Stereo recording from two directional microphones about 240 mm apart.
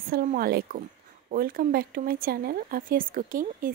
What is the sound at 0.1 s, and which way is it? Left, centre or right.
Speech, right.